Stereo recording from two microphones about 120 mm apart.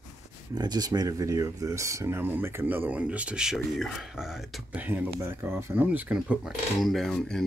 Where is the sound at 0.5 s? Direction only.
35° right (ahead or behind); by 4.6 s centre (ahead or behind).